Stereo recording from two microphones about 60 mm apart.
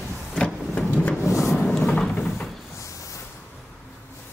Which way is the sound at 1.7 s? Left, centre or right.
Centre.